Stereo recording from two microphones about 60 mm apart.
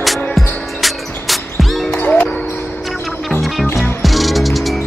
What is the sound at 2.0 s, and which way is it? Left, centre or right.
Music, left.